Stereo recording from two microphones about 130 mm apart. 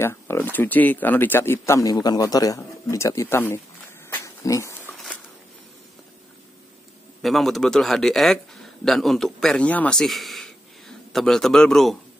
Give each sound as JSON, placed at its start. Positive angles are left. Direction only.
{"t": 0.0, "sound": "speech", "side_deg": 20}
{"t": 4.1, "sound": "dog", "side_deg": 25}
{"t": 7.2, "sound": "a man's voice", "side_deg": 0}